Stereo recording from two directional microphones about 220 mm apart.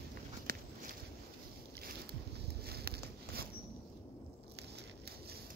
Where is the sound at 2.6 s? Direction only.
45° right (ahead or behind).